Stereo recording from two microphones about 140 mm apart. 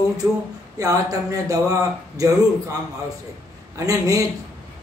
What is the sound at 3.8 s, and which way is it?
Speech, 25° right (ahead or behind).